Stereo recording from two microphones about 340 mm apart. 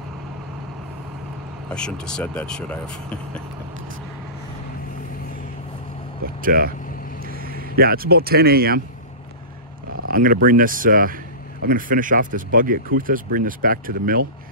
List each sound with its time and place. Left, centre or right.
1.7 s speech: centre
6.2 s vehicle: right
7.2 s speech: right
10.0 s speech: right